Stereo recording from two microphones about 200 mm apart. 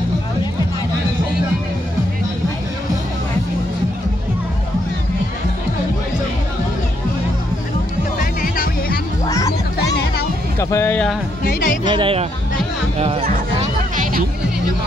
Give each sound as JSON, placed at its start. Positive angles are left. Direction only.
{"t": 8.2, "sound": "music", "side_deg": 45}
{"t": 9.2, "sound": "music", "side_deg": 15}
{"t": 9.8, "sound": "music", "side_deg": 55}
{"t": 10.6, "sound": "speech", "side_deg": 15}
{"t": 11.4, "sound": "music", "side_deg": 40}
{"t": 11.8, "sound": "speech", "side_deg": -25}
{"t": 13.0, "sound": "music", "side_deg": -30}